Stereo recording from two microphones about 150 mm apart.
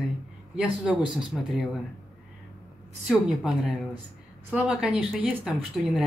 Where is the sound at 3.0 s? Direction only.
Centre (ahead or behind).